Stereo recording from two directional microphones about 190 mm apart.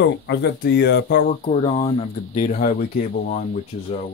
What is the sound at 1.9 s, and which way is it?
Speech, 35° left (ahead or behind).